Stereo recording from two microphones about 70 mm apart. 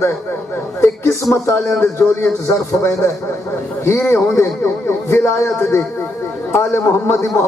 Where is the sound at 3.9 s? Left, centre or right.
Left.